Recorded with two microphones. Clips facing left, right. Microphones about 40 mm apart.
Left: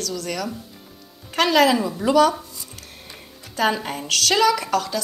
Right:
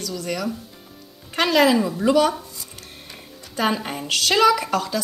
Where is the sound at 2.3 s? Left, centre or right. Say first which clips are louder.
Even; centre.